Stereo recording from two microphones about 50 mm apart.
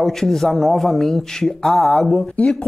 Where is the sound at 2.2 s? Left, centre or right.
Left.